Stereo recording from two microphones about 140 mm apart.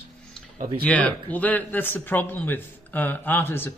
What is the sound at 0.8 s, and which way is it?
A man's voice, 10° left (ahead or behind).